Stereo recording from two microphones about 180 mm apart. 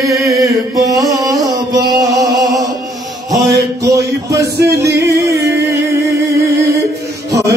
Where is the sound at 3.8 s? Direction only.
20° right (ahead or behind).